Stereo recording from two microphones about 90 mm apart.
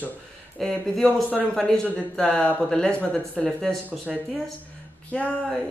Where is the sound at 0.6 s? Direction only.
5° left (ahead or behind).